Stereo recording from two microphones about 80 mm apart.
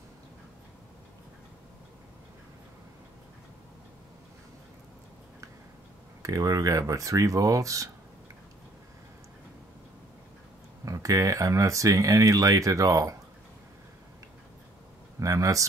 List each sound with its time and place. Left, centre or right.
6.2 s speech: right
10.9 s speech: right
15.1 s speech: right